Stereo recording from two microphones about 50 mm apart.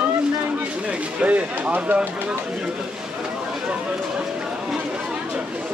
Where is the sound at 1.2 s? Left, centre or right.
Right.